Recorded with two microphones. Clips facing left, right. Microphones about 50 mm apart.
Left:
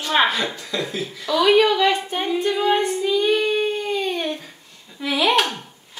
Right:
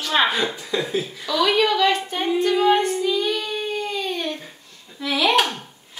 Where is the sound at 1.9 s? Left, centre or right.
Centre.